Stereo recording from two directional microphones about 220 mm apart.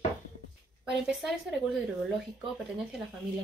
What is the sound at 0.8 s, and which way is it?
Speech, centre (ahead or behind).